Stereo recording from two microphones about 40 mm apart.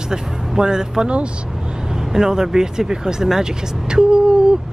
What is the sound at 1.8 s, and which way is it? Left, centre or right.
Speech, centre.